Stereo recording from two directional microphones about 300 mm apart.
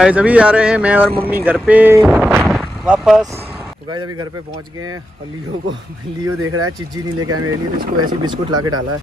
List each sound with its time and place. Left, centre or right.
0.0 s speech: centre
3.9 s speech: centre
6.4 s speech: right
7.7 s speech: right
8.1 s speech: centre